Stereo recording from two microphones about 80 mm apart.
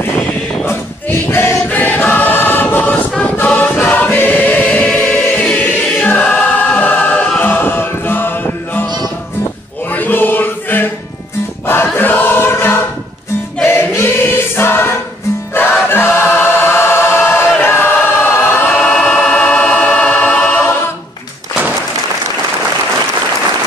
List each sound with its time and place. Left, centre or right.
0.0 s a sound: left
0.7 s choir: left
7.3 s music: left
9.8 s chant: left
11.6 s choir: left
18.7 s choir: centre